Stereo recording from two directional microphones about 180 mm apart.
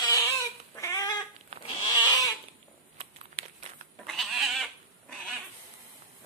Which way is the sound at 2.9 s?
30° right (ahead or behind).